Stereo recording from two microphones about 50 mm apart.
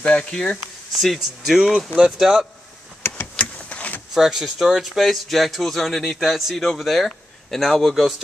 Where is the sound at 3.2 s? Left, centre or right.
Left.